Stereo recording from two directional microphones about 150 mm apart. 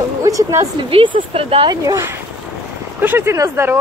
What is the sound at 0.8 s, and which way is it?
Speech, 35° right (ahead or behind).